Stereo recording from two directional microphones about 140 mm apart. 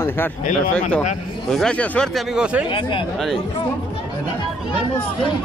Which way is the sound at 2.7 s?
35° left (ahead or behind).